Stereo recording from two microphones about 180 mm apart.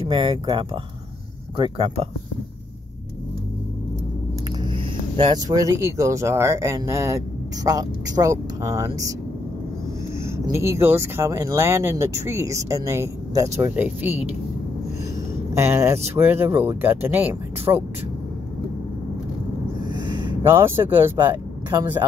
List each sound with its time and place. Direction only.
0.1 s speech: 30° right (ahead or behind)
4.5 s speech: 30° right (ahead or behind)
10.2 s speech: 15° right (ahead or behind)
15.5 s speech: 15° right (ahead or behind)
20.0 s a sound: 25° right (ahead or behind)
20.4 s speech: 15° right (ahead or behind)